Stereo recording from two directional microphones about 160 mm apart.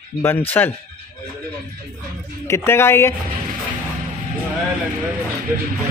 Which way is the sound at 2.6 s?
15° left (ahead or behind).